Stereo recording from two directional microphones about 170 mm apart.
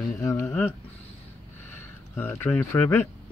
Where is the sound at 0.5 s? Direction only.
5° left (ahead or behind).